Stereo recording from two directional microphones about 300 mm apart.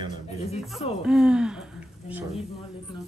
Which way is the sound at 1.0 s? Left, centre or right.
Centre.